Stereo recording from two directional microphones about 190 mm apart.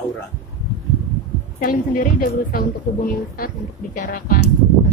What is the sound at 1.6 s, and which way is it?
A woman's voice, 50° left (ahead or behind).